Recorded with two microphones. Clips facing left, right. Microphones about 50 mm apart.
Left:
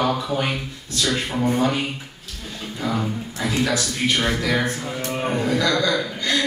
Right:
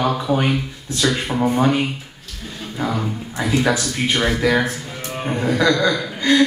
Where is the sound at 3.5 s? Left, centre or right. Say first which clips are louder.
Right 4 dB; right.